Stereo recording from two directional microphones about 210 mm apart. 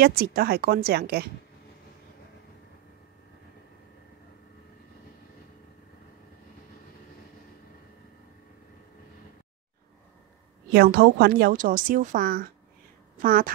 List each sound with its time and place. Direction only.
0.0 s a woman's voice: 45° right (ahead or behind)
10.7 s a woman's voice: 45° right (ahead or behind)